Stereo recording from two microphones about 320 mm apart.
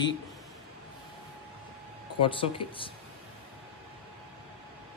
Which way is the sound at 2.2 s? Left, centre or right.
Centre.